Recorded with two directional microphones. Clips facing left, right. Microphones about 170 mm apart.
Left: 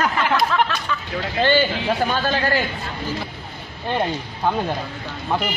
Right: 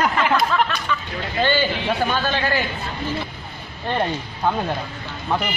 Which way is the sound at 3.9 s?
5° left (ahead or behind).